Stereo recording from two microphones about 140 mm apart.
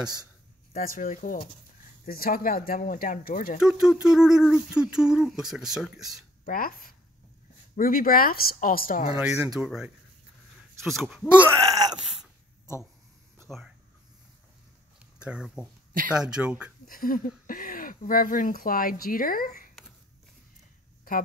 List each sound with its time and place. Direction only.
0.7 s speech: 80° left
2.0 s speech: 90° left
3.6 s a sound: 5° right (ahead or behind)
6.4 s speech: 90° left
9.5 s a sound: 5° right (ahead or behind)
11.6 s groan: 25° right (ahead or behind)
15.2 s speech: 5° right (ahead or behind)
16.8 s speech: 90° left